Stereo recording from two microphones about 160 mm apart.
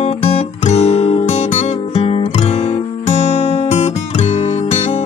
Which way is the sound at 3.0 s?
40° left (ahead or behind).